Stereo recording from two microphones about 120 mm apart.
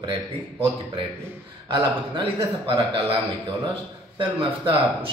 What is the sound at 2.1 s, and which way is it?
A man's voice, 45° right (ahead or behind).